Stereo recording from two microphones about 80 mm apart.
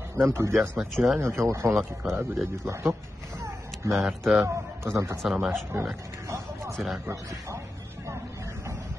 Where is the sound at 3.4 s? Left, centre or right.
Right.